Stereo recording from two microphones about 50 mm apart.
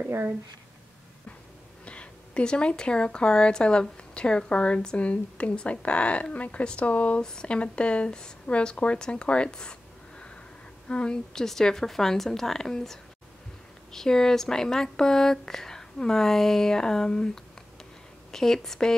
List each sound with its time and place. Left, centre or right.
1.9 s a woman's voice: left
7.2 s speech: centre
18.3 s speech: centre